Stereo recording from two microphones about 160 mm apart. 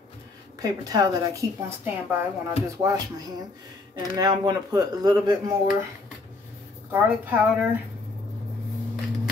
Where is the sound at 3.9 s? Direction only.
25° right (ahead or behind).